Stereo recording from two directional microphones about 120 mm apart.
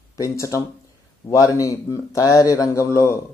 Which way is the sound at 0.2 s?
25° left (ahead or behind).